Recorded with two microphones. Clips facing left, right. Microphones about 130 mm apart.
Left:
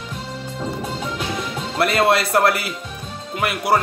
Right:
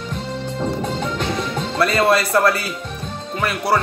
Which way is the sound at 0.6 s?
5° left (ahead or behind).